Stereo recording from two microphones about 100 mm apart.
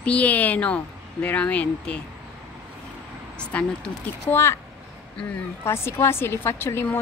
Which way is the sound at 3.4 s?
10° left (ahead or behind).